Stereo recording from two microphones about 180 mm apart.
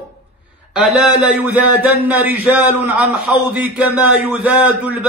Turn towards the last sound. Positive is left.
turn(degrees=-10)  # may be behind; listen again after turning